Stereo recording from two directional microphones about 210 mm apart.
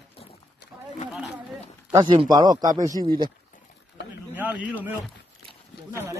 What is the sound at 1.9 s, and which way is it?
A man's voice, 25° right (ahead or behind).